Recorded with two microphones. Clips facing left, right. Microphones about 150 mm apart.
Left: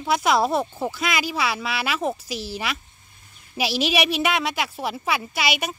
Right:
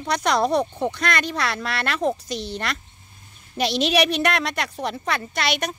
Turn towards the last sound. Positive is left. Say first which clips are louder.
# right 1 dB
turn(degrees=5)  # may be behind; listen again after turning